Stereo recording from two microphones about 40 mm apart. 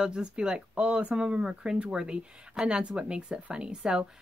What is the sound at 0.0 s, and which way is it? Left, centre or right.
Speech, right.